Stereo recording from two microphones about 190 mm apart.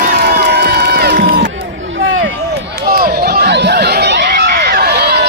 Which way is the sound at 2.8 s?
50° right (ahead or behind).